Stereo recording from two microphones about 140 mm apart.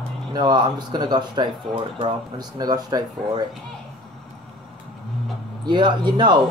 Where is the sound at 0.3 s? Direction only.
30° right (ahead or behind).